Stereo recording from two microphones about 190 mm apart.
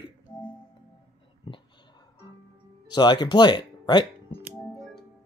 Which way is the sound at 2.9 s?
20° left (ahead or behind).